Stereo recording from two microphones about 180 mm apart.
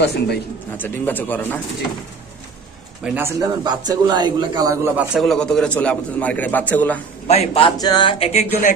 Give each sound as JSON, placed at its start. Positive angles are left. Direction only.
{"t": 0.0, "sound": "speech", "side_deg": 70}
{"t": 0.7, "sound": "a man's voice", "side_deg": 10}
{"t": 3.0, "sound": "speech", "side_deg": -10}
{"t": 3.6, "sound": "a man's voice", "side_deg": -25}
{"t": 4.9, "sound": "a man's voice", "side_deg": 0}
{"t": 7.2, "sound": "a man's voice", "side_deg": 35}
{"t": 7.7, "sound": "speech", "side_deg": 20}